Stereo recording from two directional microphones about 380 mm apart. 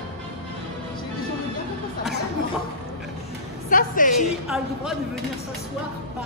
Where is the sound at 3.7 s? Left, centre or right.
Left.